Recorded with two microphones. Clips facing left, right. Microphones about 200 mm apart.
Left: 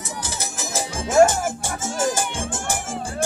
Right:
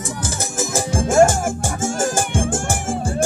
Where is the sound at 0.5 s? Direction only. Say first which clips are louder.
Right 8 dB; 50° right (ahead or behind).